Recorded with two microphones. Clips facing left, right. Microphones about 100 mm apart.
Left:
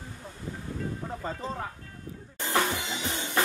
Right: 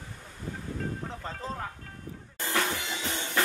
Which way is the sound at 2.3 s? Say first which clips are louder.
Left 2 dB; 20° left (ahead or behind).